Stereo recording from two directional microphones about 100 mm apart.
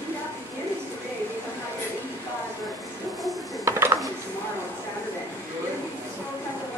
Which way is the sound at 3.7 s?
25° right (ahead or behind).